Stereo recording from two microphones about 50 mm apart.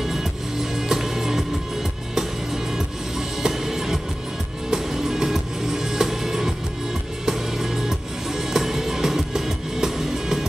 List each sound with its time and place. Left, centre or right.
0.0 s music: centre